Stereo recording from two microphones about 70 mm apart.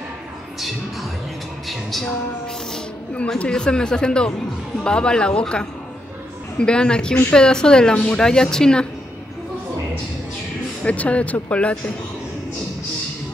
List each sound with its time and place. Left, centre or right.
1.7 s music: centre
3.3 s a woman's voice: centre
10.8 s a woman's voice: centre